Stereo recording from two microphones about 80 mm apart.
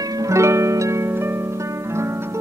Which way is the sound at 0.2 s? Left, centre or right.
Right.